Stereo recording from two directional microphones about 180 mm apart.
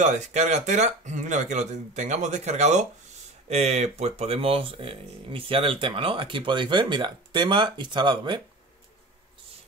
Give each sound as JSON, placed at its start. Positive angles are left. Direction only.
{"t": 0.0, "sound": "speech", "side_deg": -40}